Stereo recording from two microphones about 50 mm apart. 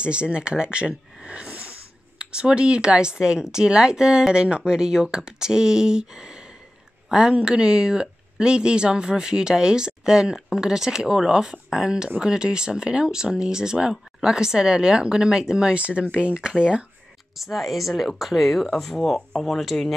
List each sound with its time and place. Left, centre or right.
0.0 s speech: right
17.4 s speech: centre